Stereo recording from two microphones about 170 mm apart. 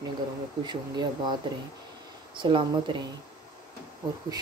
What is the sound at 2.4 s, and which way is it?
Speech, 25° right (ahead or behind).